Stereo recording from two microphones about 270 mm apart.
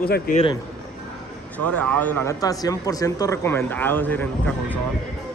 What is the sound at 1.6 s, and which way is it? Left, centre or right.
Speech, centre.